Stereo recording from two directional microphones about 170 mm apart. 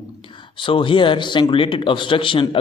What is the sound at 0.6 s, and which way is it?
A man's voice, 30° left (ahead or behind).